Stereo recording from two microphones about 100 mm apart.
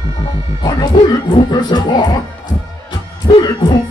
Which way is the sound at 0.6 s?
50° left (ahead or behind).